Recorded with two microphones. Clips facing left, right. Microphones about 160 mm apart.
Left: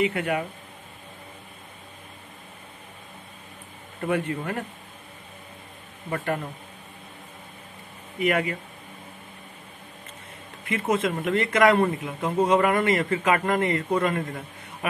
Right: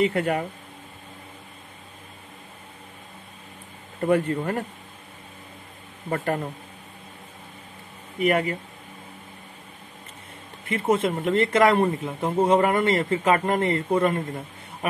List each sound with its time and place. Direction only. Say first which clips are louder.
0.0 s speech: right 2 dB; 35° right (ahead or behind)
4.0 s speech: right 5 dB; 40° right (ahead or behind)
6.0 s speech: right 2 dB; 45° right (ahead or behind)
8.2 s speech: right 2 dB; 30° right (ahead or behind)
10.7 s speech: right 2 dB; 30° right (ahead or behind)